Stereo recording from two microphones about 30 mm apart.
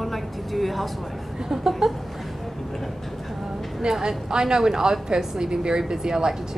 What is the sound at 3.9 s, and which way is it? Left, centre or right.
A woman's voice, centre.